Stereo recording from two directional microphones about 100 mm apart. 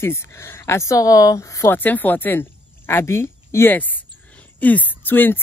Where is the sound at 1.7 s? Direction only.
20° left (ahead or behind).